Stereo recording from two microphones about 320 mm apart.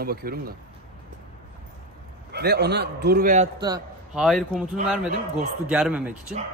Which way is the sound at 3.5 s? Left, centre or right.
Centre.